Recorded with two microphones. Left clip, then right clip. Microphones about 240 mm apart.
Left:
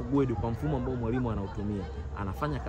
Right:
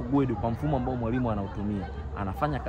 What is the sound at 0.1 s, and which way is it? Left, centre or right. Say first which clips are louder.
Speech: right 2 dB; centre.